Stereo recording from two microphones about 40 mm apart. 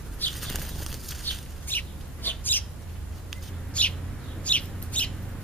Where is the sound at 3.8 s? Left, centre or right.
Left.